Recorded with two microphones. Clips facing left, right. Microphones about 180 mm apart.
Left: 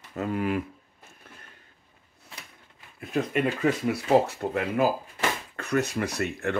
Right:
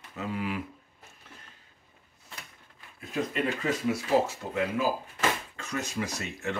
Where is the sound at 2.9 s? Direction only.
60° left (ahead or behind).